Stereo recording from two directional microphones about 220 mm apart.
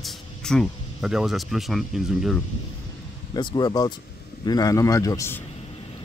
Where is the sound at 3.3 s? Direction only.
20° left (ahead or behind).